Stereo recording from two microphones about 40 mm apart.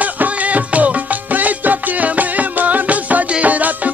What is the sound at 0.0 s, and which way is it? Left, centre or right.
Music, right.